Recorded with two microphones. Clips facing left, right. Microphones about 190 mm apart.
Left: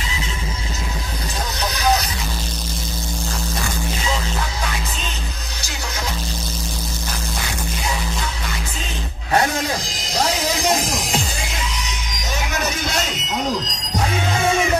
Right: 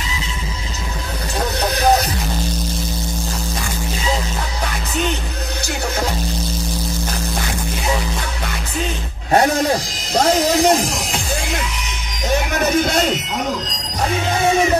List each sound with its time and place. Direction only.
1.6 s music: 50° right (ahead or behind)
9.3 s a sound: 40° right (ahead or behind)
12.5 s music: 50° right (ahead or behind)